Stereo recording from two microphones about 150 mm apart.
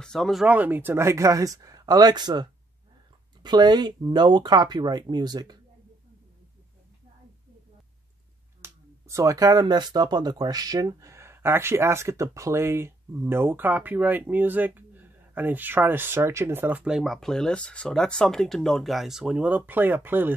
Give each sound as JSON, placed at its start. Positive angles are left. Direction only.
{"t": 0.0, "sound": "speech", "side_deg": 5}
{"t": 3.4, "sound": "speech", "side_deg": -30}
{"t": 8.6, "sound": "speech", "side_deg": -20}